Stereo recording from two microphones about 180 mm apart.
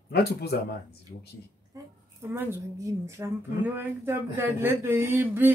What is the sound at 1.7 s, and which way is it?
A woman's voice, 15° right (ahead or behind).